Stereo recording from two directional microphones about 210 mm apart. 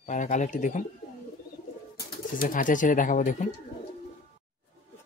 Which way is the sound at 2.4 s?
40° left (ahead or behind).